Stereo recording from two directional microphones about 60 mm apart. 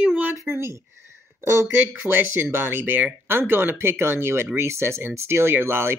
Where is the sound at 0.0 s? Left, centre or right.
Centre.